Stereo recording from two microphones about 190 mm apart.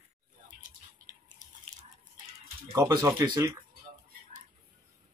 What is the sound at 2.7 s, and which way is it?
Speech, 15° right (ahead or behind).